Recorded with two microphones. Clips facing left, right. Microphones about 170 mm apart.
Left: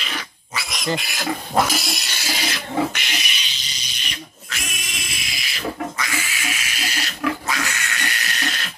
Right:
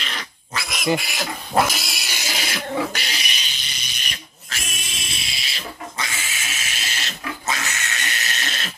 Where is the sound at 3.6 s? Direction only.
55° right (ahead or behind).